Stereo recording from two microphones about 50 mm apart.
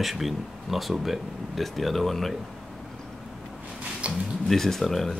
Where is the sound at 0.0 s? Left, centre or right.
Centre.